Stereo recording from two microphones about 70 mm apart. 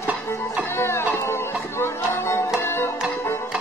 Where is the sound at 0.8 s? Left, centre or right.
Left.